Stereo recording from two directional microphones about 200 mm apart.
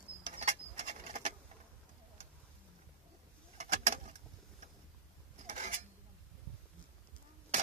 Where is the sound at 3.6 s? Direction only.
35° right (ahead or behind).